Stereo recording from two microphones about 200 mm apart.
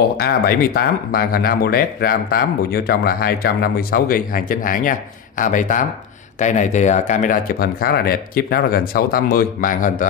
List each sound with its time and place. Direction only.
0.2 s speech: 50° left (ahead or behind)